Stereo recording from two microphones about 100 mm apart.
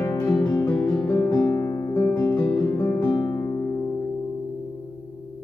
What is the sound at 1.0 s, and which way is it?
Music, 25° left (ahead or behind).